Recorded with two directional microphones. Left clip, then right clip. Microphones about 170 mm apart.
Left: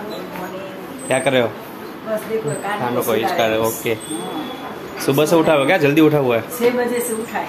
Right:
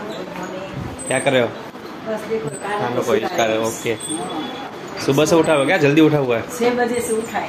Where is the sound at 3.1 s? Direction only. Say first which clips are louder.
Left 1 dB; 10° left (ahead or behind).